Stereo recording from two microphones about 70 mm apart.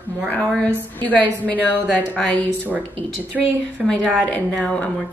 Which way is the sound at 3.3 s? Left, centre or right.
Centre.